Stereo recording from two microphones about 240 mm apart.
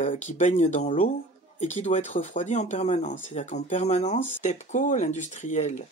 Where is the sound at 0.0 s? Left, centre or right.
Left.